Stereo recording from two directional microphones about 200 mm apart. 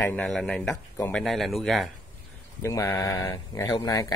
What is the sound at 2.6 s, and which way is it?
Speech, 15° left (ahead or behind).